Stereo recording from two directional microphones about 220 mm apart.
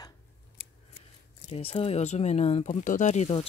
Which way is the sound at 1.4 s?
25° left (ahead or behind).